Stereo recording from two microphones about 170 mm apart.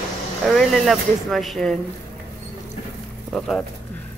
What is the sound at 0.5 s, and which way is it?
A woman's voice, centre (ahead or behind).